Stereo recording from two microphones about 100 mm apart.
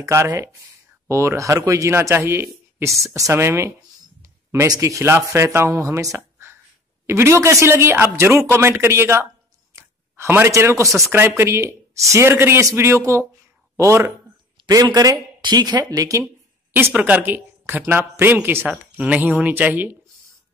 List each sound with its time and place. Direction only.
0.0 s a man's voice: 30° right (ahead or behind)
9.8 s a sound: 25° right (ahead or behind)
11.0 s speech: 25° right (ahead or behind)
14.7 s speech: 40° right (ahead or behind)
16.7 s speech: 20° right (ahead or behind)